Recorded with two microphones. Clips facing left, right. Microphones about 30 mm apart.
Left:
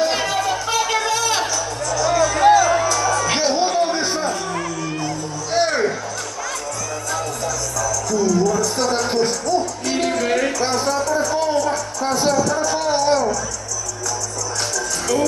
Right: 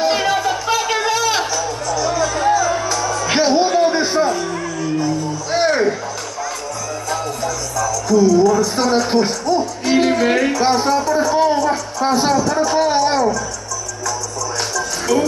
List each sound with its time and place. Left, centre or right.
0.0 s a sound: centre
1.4 s music: centre
5.5 s music: centre
7.1 s music: centre
10.5 s speech: right
14.8 s music: centre